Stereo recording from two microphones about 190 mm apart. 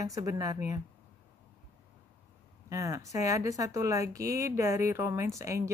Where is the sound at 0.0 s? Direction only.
20° right (ahead or behind).